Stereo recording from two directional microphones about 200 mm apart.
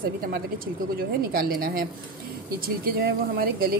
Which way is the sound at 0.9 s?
45° right (ahead or behind).